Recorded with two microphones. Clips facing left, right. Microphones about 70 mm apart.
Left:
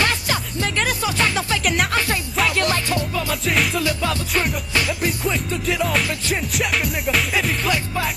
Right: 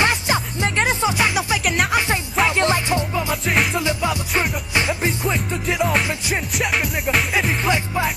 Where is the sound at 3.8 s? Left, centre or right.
Centre.